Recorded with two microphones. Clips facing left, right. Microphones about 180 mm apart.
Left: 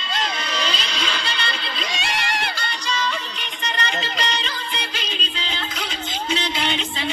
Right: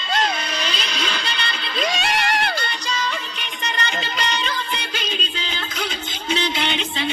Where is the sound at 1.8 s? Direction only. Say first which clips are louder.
Right 8 dB; 45° right (ahead or behind).